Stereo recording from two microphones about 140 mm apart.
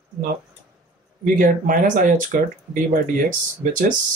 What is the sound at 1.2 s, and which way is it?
Speech, 75° right (ahead or behind).